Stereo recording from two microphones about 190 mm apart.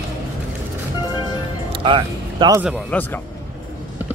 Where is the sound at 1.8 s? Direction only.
25° right (ahead or behind).